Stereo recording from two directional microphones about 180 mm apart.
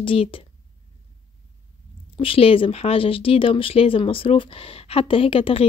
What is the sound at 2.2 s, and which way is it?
Speech, 30° left (ahead or behind).